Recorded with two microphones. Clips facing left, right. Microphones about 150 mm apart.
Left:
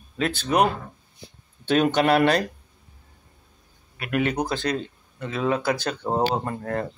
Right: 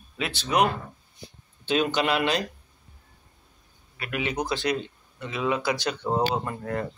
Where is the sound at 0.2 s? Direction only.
50° left (ahead or behind).